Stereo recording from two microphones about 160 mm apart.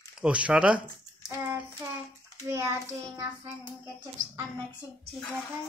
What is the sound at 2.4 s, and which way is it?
Speech, 20° right (ahead or behind).